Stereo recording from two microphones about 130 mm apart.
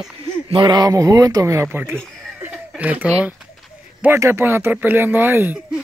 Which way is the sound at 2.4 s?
10° right (ahead or behind).